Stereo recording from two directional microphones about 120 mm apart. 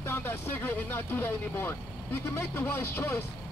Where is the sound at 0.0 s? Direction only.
20° left (ahead or behind).